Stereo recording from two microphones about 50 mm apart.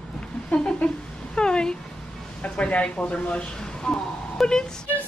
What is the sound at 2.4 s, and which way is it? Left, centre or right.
A woman's voice, left.